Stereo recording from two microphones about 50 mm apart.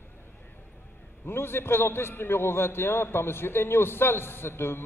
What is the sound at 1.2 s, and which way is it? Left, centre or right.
A woman's voice, left.